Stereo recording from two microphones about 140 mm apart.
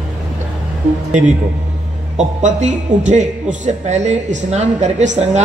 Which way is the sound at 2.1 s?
55° right (ahead or behind).